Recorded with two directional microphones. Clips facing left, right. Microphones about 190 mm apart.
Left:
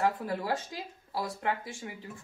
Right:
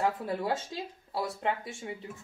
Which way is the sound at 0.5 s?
25° right (ahead or behind).